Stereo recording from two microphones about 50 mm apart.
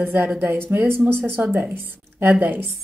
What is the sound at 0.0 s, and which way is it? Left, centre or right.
A woman's voice, right.